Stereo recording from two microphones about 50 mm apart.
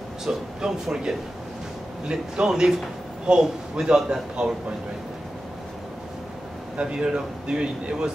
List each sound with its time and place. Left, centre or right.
0.2 s a man's voice: centre
6.8 s speech: centre